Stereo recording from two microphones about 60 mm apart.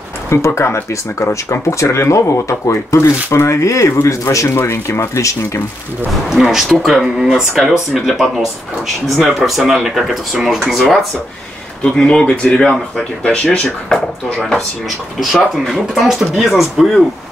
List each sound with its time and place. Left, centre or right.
0.6 s speech: left
1.3 s speech: left
4.6 s speech: left
6.3 s speech: centre
11.8 s speech: centre
13.2 s speech: left
13.9 s speech: centre